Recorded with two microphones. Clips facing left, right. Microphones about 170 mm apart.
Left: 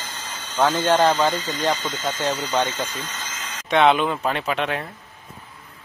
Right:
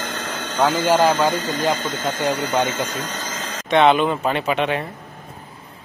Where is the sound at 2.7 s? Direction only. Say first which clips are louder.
Right 4 dB; 50° right (ahead or behind).